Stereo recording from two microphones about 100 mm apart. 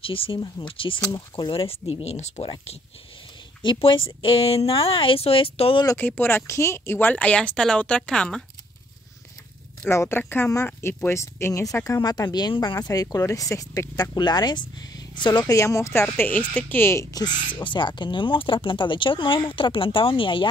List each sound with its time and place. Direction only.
0.0 s speech: 65° left (ahead or behind); by 2.5 s 80° left
3.6 s speech: 60° left (ahead or behind)
5.9 s speech: 20° left (ahead or behind)
9.8 s speech: 25° left (ahead or behind); by 12.6 s 45° left (ahead or behind)
12.6 s speech: 35° left (ahead or behind)
15.5 s speech: 30° left (ahead or behind)
17.2 s speech: 55° left (ahead or behind)